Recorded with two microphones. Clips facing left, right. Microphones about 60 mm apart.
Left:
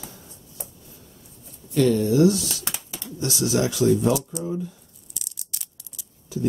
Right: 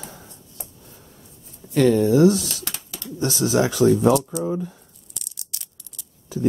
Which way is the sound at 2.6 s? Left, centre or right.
Centre.